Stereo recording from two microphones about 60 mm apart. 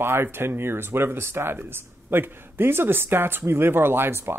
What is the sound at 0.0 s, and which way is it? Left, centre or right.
Speech, right.